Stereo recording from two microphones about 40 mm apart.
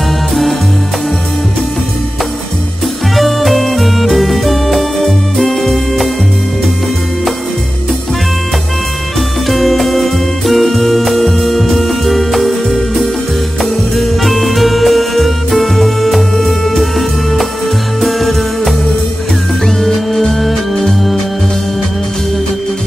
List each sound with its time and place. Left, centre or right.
3.2 s music: centre
9.5 s music: centre
18.0 s music: centre
19.8 s music: centre